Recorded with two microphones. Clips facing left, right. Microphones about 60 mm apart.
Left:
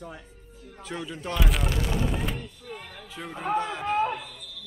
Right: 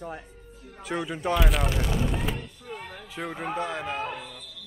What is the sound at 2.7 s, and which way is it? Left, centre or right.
Speech, centre.